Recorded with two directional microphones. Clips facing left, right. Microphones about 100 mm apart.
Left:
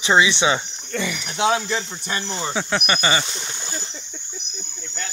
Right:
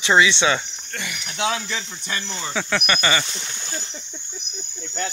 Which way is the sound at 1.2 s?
30° left (ahead or behind).